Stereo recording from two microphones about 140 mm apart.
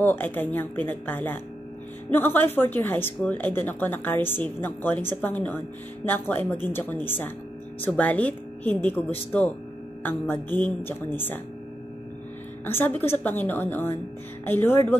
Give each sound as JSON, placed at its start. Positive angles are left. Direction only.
{"t": 0.0, "sound": "a woman's voice", "side_deg": 15}
{"t": 12.6, "sound": "a woman's voice", "side_deg": 15}